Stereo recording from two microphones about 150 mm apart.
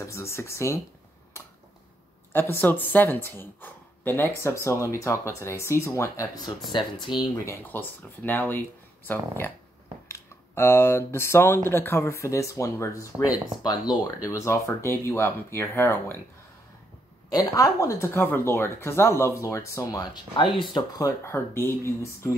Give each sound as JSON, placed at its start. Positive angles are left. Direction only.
{"t": 0.0, "sound": "speech", "side_deg": 20}
{"t": 2.3, "sound": "speech", "side_deg": 15}
{"t": 7.4, "sound": "speech", "side_deg": 15}
{"t": 17.3, "sound": "speech", "side_deg": 25}
{"t": 20.7, "sound": "speech", "side_deg": 20}